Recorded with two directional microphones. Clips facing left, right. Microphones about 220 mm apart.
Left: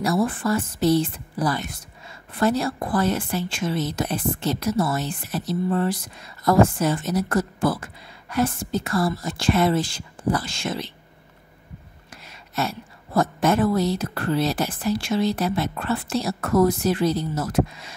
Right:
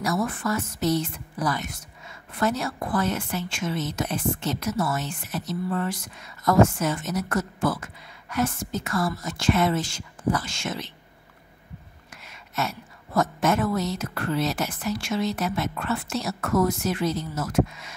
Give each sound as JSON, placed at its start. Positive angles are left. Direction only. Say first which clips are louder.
{"t": 0.0, "sound": "speech", "louder": "left 4 dB", "side_deg": 30}
{"t": 12.3, "sound": "speech", "louder": "left 3 dB", "side_deg": 35}